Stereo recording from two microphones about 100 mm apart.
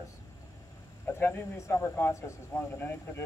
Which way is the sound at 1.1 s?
25° left (ahead or behind).